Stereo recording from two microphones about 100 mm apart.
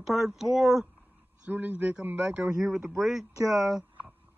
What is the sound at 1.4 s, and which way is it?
A man's voice, 15° right (ahead or behind).